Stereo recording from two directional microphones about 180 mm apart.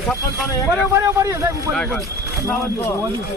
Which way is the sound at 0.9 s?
15° right (ahead or behind).